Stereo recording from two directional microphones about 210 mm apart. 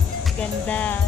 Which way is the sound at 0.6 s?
5° left (ahead or behind).